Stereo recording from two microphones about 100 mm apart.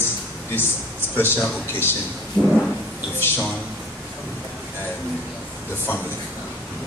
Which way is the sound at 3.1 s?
20° left (ahead or behind).